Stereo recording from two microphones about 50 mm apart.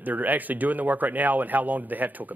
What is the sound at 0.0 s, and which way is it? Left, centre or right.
Speech, right.